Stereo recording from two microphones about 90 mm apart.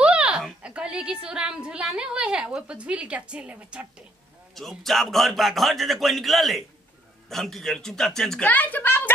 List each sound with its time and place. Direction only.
0.0 s a sound: 10° right (ahead or behind)
0.6 s a woman's voice: 10° right (ahead or behind)
4.6 s a man's voice: centre (ahead or behind)
8.5 s speech: 20° left (ahead or behind)